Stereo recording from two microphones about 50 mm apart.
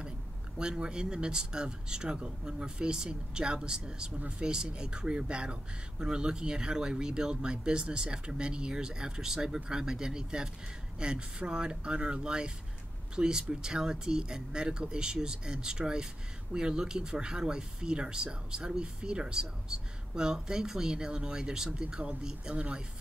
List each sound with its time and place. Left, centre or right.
0.6 s speech: centre